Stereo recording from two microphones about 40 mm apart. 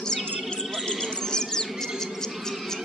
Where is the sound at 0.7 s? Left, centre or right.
Centre.